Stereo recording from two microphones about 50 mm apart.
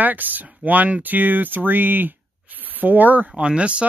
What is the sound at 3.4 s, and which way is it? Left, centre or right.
Speech, right.